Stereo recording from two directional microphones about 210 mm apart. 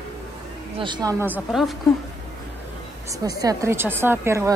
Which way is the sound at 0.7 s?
20° right (ahead or behind).